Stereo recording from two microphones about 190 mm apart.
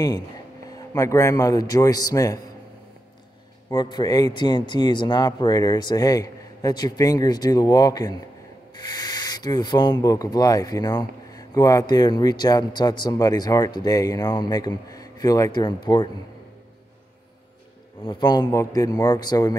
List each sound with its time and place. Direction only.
0.7 s speech: 20° left (ahead or behind)
3.7 s speech: 20° left (ahead or behind)
18.0 s speech: 25° left (ahead or behind)